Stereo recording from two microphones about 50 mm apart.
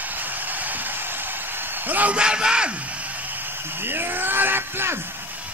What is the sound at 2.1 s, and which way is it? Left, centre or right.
Music, centre.